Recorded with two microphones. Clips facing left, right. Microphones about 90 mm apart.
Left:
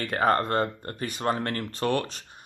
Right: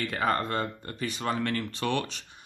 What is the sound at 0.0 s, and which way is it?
Speech, 40° left (ahead or behind).